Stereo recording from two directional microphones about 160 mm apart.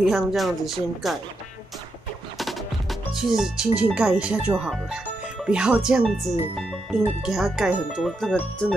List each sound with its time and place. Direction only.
0.0 s speech: centre (ahead or behind)
2.3 s speech: centre (ahead or behind)
6.5 s music: centre (ahead or behind)
7.2 s speech: centre (ahead or behind)